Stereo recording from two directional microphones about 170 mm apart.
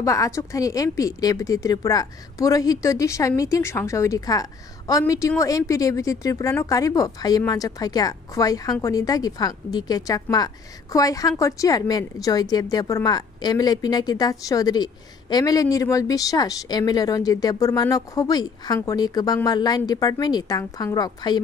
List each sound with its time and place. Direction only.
0.0 s a woman's voice: 20° left (ahead or behind)